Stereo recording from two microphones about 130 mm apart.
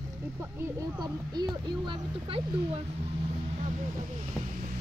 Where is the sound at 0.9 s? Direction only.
30° right (ahead or behind).